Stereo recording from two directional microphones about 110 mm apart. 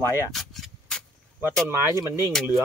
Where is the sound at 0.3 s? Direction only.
Centre (ahead or behind).